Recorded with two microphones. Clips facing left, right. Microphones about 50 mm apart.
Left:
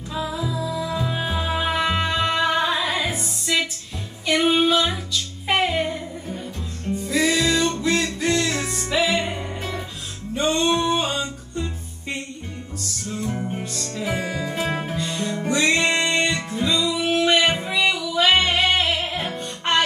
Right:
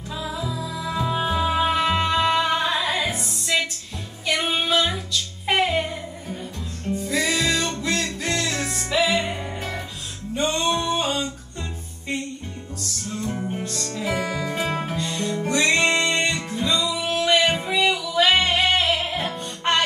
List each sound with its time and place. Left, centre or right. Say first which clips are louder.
0.1 s music: left 3 dB; centre
13.1 s music: left 1 dB; centre